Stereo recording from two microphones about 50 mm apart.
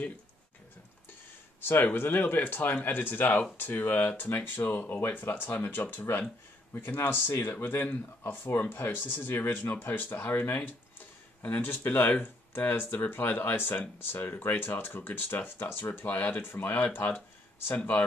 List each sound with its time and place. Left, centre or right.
1.6 s speech: left
17.7 s speech: left